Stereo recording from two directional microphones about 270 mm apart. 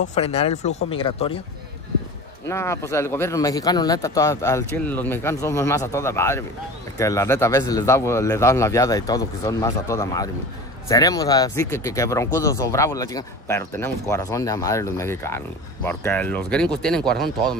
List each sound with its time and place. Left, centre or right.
0.0 s speech: left
2.4 s speech: centre